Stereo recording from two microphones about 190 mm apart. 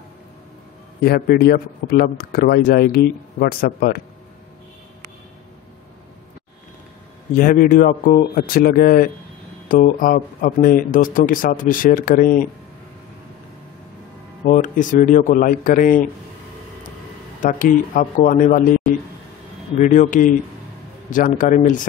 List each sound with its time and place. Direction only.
1.0 s a man's voice: 55° left (ahead or behind)
7.3 s a man's voice: 45° left (ahead or behind)
14.4 s a man's voice: 45° left (ahead or behind)
17.4 s a man's voice: 45° left (ahead or behind)
19.8 s a man's voice: 40° left (ahead or behind)